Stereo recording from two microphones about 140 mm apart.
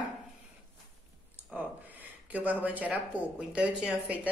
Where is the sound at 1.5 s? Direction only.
10° right (ahead or behind).